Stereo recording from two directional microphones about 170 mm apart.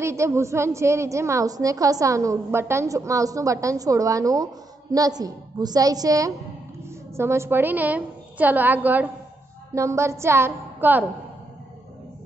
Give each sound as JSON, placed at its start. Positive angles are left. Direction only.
{"t": 0.0, "sound": "a woman's voice", "side_deg": -15}